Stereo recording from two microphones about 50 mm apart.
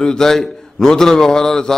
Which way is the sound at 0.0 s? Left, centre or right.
Centre.